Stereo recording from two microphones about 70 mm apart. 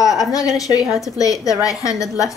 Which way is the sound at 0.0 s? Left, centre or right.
Centre.